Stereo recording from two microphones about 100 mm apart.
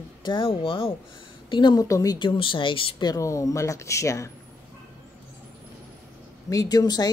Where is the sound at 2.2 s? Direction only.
55° left (ahead or behind).